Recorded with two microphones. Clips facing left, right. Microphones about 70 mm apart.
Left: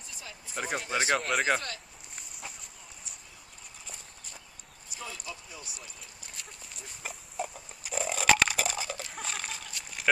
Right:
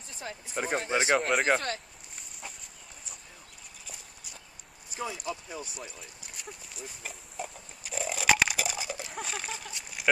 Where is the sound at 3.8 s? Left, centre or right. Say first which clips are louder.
Right 1 dB; centre.